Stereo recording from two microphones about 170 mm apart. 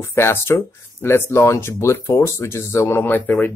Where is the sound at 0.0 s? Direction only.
15° left (ahead or behind).